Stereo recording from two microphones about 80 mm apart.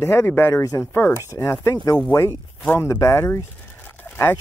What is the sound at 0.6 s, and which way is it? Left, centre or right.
Speech, left.